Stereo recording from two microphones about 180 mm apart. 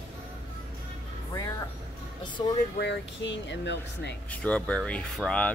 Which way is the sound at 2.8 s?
80° left.